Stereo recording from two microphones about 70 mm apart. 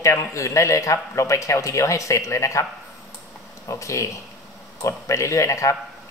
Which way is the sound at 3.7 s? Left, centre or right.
Left.